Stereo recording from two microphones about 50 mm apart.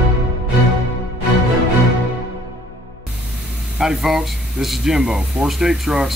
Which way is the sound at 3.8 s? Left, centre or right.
Centre.